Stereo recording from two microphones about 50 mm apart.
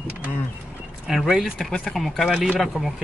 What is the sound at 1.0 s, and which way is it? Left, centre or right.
Speech, centre.